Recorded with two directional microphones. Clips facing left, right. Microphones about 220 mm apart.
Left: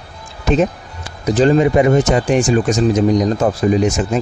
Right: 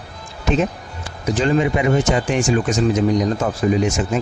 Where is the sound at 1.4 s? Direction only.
40° left (ahead or behind).